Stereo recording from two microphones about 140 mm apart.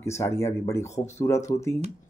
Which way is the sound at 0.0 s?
20° left (ahead or behind).